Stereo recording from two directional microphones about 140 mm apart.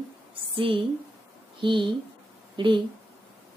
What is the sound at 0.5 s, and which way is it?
A woman's voice, 40° right (ahead or behind).